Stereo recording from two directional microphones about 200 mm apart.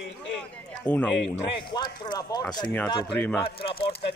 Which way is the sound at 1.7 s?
20° left (ahead or behind).